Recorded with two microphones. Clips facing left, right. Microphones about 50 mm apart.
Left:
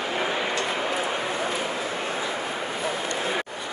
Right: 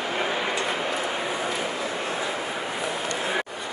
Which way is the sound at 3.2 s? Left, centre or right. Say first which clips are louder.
Right 2 dB; centre.